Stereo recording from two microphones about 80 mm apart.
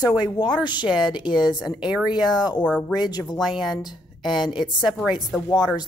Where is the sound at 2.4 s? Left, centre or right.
Left.